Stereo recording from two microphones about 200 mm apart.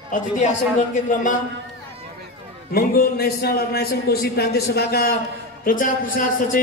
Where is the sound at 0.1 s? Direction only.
35° left (ahead or behind).